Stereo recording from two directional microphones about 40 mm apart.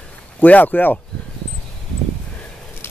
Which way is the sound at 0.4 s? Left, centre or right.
Left.